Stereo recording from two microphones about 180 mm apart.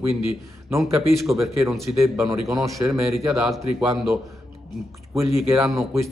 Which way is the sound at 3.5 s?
Centre (ahead or behind).